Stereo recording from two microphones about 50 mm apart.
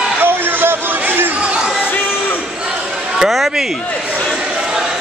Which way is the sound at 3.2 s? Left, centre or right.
Centre.